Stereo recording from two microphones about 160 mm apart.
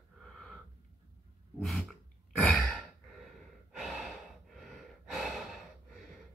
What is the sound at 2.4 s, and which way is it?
Sigh, centre (ahead or behind).